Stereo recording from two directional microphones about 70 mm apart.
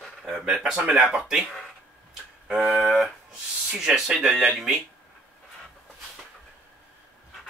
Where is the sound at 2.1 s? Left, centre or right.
Centre.